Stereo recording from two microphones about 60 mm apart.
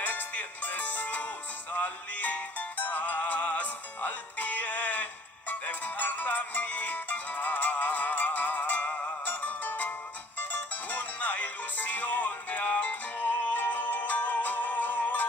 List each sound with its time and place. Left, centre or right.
0.0 s music: left